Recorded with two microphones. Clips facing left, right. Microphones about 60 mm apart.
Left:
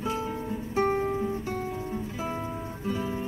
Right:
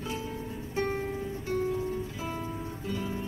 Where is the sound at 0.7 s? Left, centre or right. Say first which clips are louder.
Left 6 dB; left.